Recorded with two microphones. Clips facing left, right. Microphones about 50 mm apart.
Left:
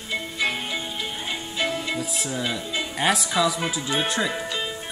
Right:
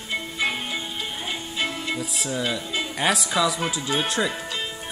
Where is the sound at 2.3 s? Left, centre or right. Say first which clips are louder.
Right 2 dB; centre.